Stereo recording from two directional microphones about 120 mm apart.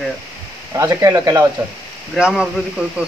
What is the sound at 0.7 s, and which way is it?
Speech, 25° right (ahead or behind).